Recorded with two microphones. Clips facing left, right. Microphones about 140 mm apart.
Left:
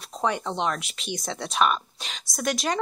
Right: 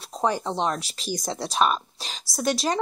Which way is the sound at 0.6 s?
35° right (ahead or behind).